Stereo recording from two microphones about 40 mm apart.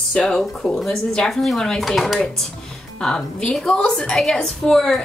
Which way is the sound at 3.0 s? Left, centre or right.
Centre.